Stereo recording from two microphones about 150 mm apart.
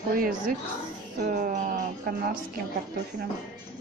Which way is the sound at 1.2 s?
65° right (ahead or behind).